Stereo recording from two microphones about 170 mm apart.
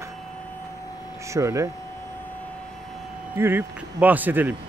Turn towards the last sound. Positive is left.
turn(degrees=-10)  # may be behind; listen again after turning